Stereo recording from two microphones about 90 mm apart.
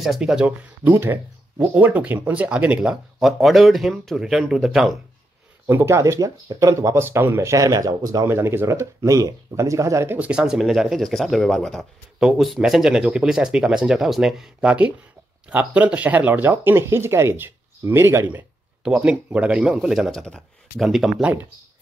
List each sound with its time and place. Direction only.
0.0 s speech: 5° right (ahead or behind)
0.8 s speech: 25° right (ahead or behind); by 4.9 s centre (ahead or behind)
5.7 s speech: 25° right (ahead or behind)
8.3 s speech: 25° right (ahead or behind)
10.1 s speech: 15° right (ahead or behind); by 11.8 s 5° left (ahead or behind)
12.2 s speech: 5° right (ahead or behind); by 18.4 s 25° right (ahead or behind)
18.9 s speech: 15° right (ahead or behind)
20.2 s speech: 10° left (ahead or behind)
20.8 s speech: 5° right (ahead or behind)
21.2 s speech: 20° right (ahead or behind)